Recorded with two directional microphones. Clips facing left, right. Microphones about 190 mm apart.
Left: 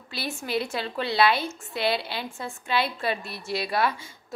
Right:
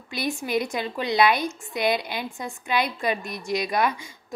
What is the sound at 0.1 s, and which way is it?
A woman's voice, 15° right (ahead or behind).